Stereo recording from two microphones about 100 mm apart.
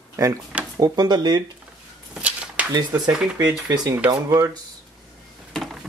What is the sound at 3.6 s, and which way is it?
Speech, 40° right (ahead or behind).